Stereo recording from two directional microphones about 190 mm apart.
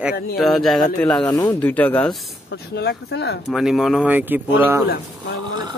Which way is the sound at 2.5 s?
60° left (ahead or behind).